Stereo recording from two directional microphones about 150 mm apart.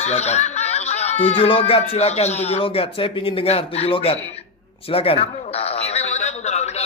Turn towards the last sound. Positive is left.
turn(degrees=50)  # may be behind; listen again after turning